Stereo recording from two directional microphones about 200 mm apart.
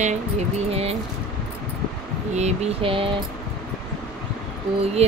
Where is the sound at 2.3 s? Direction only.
35° right (ahead or behind).